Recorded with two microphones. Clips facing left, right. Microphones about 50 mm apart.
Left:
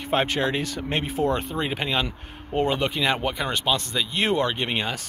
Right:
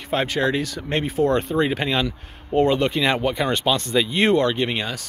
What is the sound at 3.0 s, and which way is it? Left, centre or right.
Speech, centre.